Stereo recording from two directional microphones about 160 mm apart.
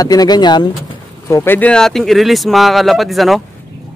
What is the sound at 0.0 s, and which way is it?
Speech, 25° left (ahead or behind).